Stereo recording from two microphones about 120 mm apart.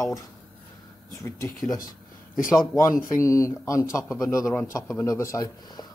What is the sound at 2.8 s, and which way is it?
Speech, 25° left (ahead or behind).